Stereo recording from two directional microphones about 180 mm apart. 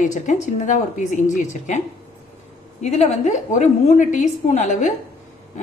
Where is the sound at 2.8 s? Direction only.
35° left (ahead or behind).